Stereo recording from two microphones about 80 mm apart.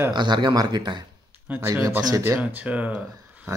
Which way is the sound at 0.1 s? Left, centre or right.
Right.